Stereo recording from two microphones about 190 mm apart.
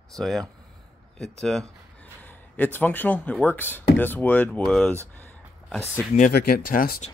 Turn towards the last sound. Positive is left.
turn(degrees=50)  # may be behind; listen again after turning